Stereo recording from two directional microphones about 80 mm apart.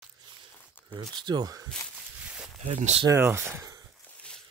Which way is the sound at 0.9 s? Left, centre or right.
Right.